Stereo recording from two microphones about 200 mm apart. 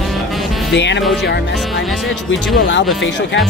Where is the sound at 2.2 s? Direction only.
70° left (ahead or behind).